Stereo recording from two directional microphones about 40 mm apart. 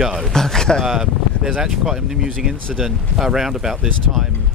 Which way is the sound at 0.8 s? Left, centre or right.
Centre.